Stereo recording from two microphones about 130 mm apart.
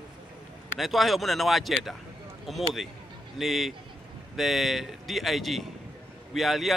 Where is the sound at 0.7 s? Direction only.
Centre (ahead or behind).